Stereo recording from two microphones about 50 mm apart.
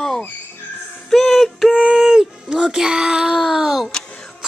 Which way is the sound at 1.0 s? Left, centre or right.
Centre.